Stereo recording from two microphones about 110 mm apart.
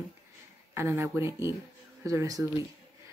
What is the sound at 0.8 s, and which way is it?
Speech, 25° right (ahead or behind).